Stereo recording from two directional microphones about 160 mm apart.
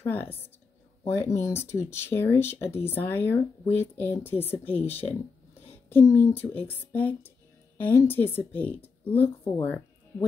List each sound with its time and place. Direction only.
0.0 s speech: 10° left (ahead or behind)